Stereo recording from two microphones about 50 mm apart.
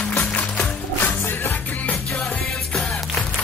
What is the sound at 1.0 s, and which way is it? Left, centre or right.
Music, left.